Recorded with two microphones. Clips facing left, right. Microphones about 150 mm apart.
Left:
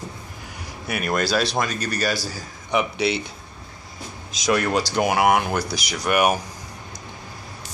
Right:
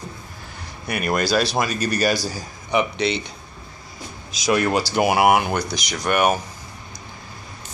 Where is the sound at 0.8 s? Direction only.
Centre (ahead or behind).